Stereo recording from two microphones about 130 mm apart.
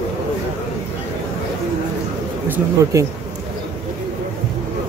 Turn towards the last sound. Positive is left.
turn(degrees=-20)  # may be behind; listen again after turning